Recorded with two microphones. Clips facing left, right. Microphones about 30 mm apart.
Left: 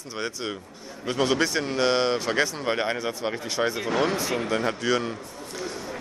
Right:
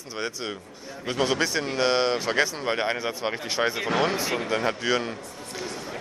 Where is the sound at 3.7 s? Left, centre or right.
Right; by 5.1 s centre.